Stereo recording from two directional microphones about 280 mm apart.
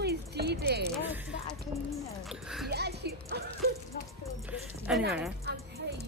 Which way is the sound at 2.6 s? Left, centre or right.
Right.